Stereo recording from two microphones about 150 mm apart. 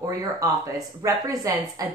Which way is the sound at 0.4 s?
25° right (ahead or behind).